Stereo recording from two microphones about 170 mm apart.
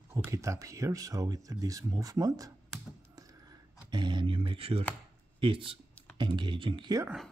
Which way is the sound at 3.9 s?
25° right (ahead or behind).